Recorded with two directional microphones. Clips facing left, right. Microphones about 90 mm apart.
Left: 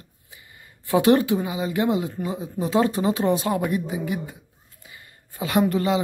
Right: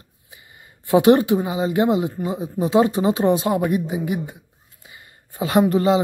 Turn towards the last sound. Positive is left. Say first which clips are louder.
# right 4 dB
turn(degrees=-30)  # may be behind; listen again after turning